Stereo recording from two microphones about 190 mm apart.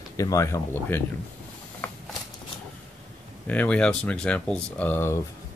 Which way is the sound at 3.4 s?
5° left (ahead or behind).